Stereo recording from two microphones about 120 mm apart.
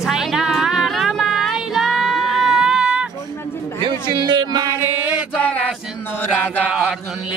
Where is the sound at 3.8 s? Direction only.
35° right (ahead or behind).